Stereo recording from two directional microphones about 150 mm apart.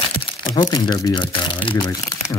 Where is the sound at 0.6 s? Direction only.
30° left (ahead or behind).